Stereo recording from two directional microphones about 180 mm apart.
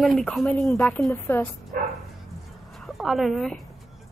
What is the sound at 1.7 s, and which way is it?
Dog, 50° right (ahead or behind).